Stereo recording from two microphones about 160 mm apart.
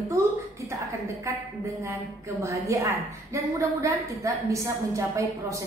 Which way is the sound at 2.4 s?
20° right (ahead or behind).